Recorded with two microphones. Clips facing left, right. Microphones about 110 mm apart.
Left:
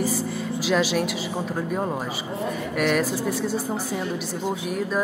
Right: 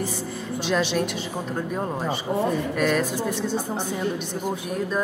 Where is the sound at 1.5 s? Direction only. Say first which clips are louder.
Even; 5° left (ahead or behind).